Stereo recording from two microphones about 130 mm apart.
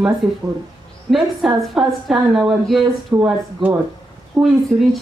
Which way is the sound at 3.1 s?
20° right (ahead or behind).